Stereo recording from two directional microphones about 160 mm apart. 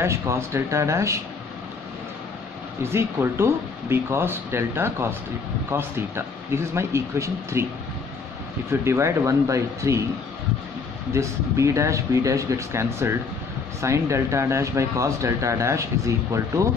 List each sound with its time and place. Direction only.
0.0 s speech: 15° right (ahead or behind)
2.8 s speech: 15° right (ahead or behind)
8.6 s speech: 15° right (ahead or behind)
11.1 s speech: 20° right (ahead or behind)